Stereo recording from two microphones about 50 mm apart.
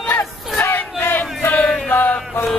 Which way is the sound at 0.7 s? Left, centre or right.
Left.